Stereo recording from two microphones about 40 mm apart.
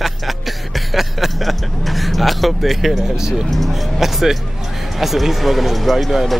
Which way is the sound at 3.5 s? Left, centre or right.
Centre.